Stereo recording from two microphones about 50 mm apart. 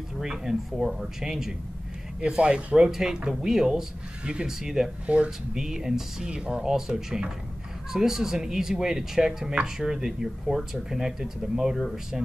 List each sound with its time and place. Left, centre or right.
0.2 s speech: centre
2.2 s speech: right
2.8 s speech: centre
4.5 s speech: centre
5.0 s speech: right
5.5 s speech: centre
6.3 s speech: centre